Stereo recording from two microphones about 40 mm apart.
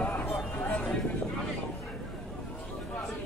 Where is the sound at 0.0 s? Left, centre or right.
Left.